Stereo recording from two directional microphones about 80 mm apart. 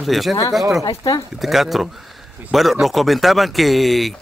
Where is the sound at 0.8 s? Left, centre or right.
Left.